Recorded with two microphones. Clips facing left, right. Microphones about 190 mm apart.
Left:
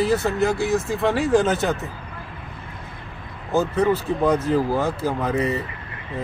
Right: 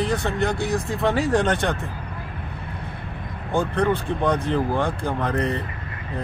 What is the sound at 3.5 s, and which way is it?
Speech, 5° left (ahead or behind).